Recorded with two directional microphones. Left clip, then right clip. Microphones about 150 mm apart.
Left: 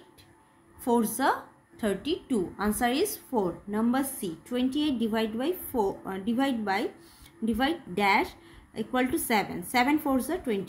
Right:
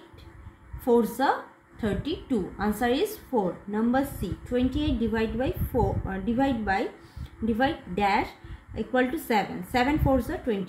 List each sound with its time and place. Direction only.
0.8 s a woman's voice: 40° left (ahead or behind)